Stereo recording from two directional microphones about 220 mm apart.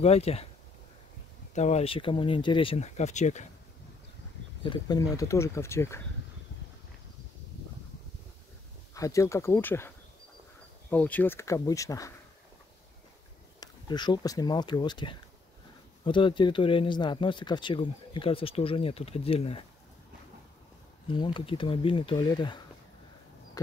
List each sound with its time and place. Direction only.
0.0 s speech: 30° left (ahead or behind)
1.5 s speech: 30° left (ahead or behind)
4.6 s speech: 20° left (ahead or behind)
8.9 s speech: 15° left (ahead or behind)
13.6 s speech: 20° left (ahead or behind)
21.1 s speech: 20° left (ahead or behind)